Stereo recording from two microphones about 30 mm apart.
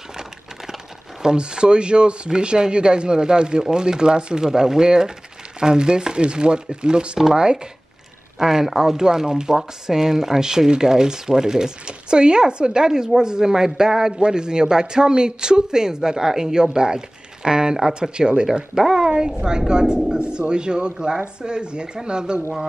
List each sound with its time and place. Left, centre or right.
1.3 s speech: right
8.4 s speech: centre; by 22.4 s right